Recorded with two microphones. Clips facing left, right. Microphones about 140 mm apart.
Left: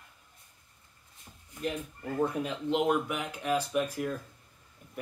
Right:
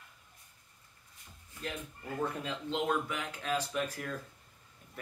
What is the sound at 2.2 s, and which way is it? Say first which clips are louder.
Speech: left 6 dB; 15° left (ahead or behind).